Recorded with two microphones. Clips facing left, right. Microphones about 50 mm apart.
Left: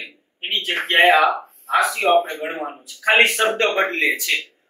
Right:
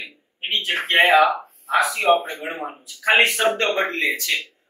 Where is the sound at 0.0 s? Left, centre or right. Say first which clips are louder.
Even; centre.